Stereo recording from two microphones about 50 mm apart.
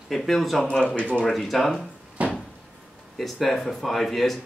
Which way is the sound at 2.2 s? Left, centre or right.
Right.